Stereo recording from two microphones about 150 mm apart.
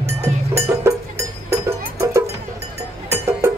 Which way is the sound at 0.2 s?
20° right (ahead or behind).